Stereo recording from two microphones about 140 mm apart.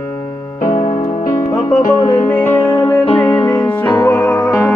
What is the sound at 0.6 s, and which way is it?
Music, 70° left (ahead or behind).